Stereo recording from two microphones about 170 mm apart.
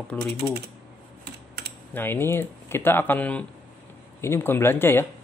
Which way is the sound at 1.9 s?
10° left (ahead or behind).